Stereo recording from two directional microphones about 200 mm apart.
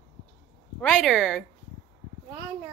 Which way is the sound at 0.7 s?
5° left (ahead or behind).